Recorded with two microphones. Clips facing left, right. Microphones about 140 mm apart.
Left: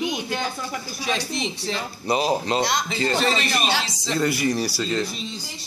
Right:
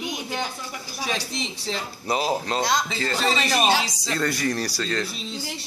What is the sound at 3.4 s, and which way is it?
Speech, 45° right (ahead or behind).